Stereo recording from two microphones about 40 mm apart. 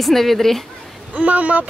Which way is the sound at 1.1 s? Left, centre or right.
Right.